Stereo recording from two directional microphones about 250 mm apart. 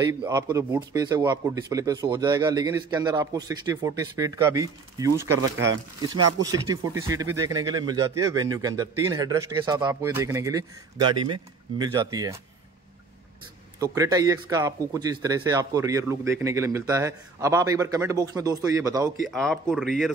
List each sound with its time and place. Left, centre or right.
0.0 s a man's voice: centre
13.7 s a man's voice: centre
19.2 s speech: centre